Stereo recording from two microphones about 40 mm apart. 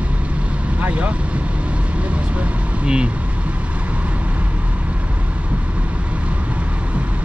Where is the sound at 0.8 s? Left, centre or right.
Right.